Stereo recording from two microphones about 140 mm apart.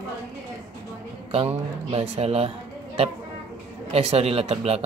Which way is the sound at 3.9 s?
45° right (ahead or behind).